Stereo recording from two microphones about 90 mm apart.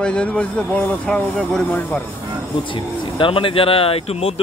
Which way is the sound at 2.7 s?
75° left (ahead or behind).